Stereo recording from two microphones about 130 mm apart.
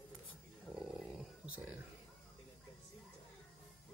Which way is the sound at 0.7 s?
5° right (ahead or behind).